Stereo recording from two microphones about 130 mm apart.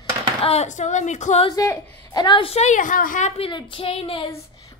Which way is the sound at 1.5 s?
25° left (ahead or behind).